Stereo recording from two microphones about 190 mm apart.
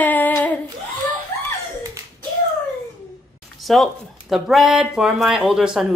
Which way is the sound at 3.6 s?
Centre (ahead or behind).